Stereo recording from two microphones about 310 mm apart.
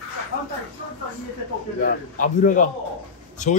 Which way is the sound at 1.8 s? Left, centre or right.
Left.